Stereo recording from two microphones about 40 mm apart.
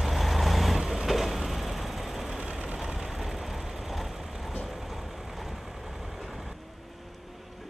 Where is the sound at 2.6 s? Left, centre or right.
Centre.